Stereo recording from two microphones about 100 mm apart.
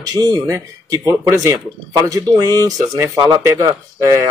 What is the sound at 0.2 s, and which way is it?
Speech, 35° right (ahead or behind).